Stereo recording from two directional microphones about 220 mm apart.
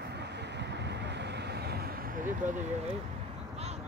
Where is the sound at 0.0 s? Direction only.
50° right (ahead or behind).